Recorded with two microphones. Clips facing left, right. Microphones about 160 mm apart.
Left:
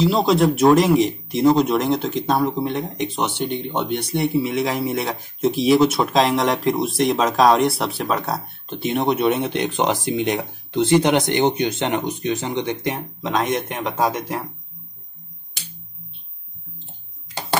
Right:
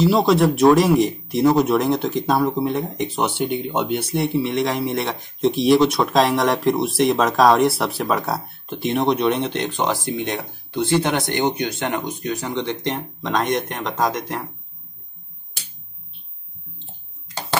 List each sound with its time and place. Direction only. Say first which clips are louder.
0.0 s speech: right 1 dB; centre (ahead or behind)